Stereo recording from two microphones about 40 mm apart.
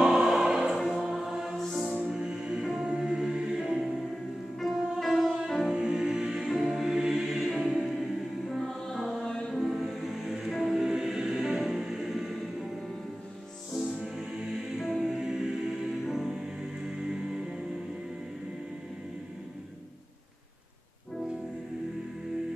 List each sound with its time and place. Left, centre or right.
0.0 s choir: centre
1.2 s music: centre
5.0 s music: centre
5.7 s music: centre
8.5 s music: centre
9.2 s music: centre
9.6 s music: centre
13.7 s music: centre
16.3 s music: centre